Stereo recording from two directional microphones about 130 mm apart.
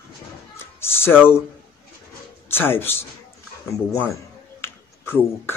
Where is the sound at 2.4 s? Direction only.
15° left (ahead or behind).